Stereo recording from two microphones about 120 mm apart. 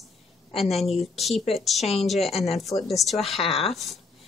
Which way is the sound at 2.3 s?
60° left (ahead or behind).